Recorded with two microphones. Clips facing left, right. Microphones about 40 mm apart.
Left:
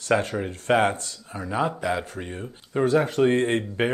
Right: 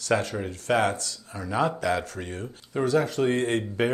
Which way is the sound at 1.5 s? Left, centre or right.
Centre.